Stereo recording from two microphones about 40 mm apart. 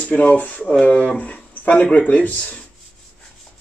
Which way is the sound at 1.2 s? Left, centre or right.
Left.